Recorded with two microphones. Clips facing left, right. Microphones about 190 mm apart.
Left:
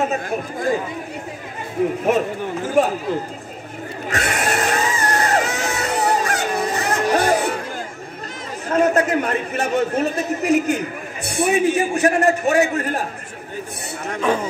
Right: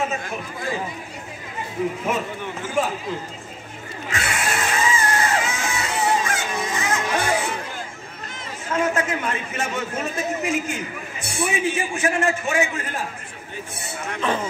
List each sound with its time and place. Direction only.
0.3 s speech: 45° left (ahead or behind)
2.0 s a man's voice: 40° left (ahead or behind)
4.1 s a sound: 40° left (ahead or behind)
8.6 s chatter: 40° left (ahead or behind)
9.6 s a man's voice: 35° left (ahead or behind)